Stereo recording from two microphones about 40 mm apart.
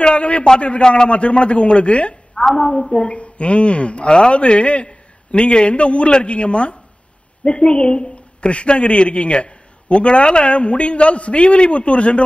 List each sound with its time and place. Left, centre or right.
0.0 s a man's voice: left
2.3 s a woman's voice: centre
3.0 s a woman's voice: left